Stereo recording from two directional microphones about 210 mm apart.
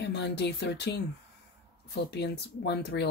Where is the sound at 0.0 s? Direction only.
55° left (ahead or behind).